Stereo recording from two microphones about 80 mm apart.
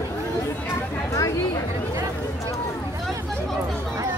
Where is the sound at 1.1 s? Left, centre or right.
Left.